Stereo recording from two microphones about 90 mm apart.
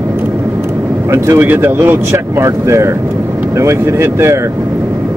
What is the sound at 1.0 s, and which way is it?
Speech, 30° right (ahead or behind).